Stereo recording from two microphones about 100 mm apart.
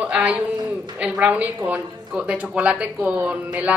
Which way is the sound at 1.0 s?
15° right (ahead or behind).